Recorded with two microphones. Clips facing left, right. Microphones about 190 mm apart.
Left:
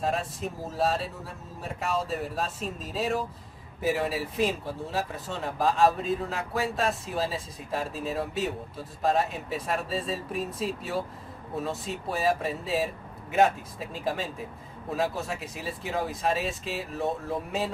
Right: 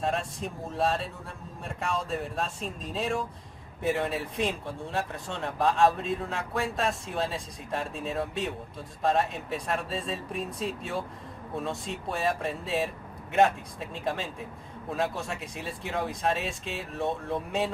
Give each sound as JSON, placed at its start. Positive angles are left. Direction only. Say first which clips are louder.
{"t": 0.0, "sound": "speech", "louder": "left 1 dB", "side_deg": 0}